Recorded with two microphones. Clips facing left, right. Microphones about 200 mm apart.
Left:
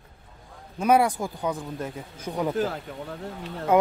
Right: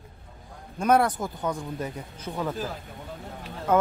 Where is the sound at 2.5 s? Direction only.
70° left (ahead or behind).